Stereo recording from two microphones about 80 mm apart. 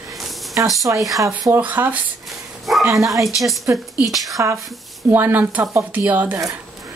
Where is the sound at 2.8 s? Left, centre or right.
Right.